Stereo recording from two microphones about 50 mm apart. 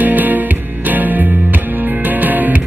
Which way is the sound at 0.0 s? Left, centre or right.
Right.